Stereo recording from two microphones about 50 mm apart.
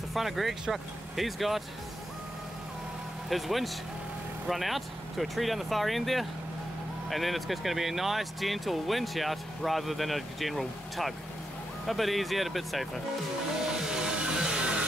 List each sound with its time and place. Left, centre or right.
0.1 s speech: centre
3.3 s speech: centre
13.8 s music: centre